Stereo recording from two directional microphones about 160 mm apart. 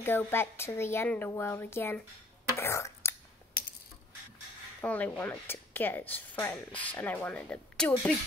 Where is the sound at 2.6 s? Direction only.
15° left (ahead or behind).